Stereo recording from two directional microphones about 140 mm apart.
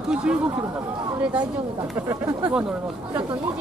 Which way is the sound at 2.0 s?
20° right (ahead or behind).